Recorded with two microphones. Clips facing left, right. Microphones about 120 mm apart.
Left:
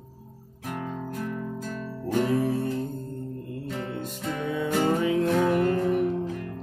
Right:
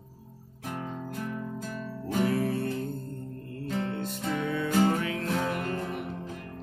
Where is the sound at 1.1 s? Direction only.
5° right (ahead or behind).